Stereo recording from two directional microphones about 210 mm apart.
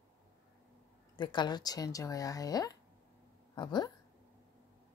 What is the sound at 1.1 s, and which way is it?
Speech, 20° left (ahead or behind).